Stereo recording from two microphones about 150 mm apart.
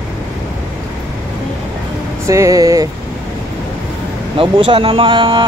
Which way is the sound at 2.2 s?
20° right (ahead or behind).